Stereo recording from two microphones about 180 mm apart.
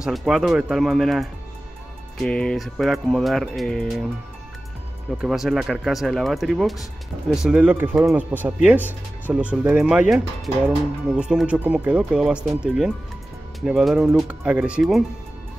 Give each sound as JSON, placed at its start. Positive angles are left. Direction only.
{"t": 0.0, "sound": "speech", "side_deg": 0}
{"t": 5.2, "sound": "speech", "side_deg": 0}